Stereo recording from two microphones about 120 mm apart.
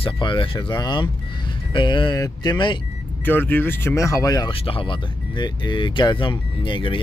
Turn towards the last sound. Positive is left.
turn(degrees=45)  # may be behind; listen again after turning